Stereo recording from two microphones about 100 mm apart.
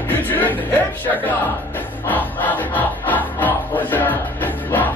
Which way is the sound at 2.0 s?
15° left (ahead or behind).